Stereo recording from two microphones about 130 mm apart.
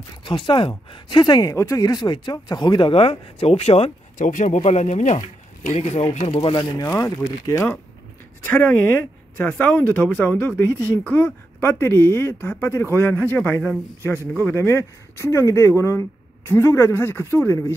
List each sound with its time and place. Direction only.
0.2 s speech: 40° left (ahead or behind)
4.2 s speech: 80° left
4.6 s speech: 55° left (ahead or behind)
6.9 s speech: 25° left (ahead or behind)
9.4 s speech: 10° left (ahead or behind)